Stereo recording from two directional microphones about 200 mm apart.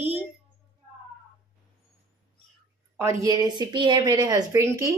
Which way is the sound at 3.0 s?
15° right (ahead or behind).